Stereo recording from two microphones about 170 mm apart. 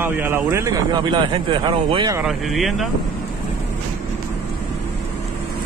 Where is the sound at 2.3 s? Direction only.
Centre (ahead or behind).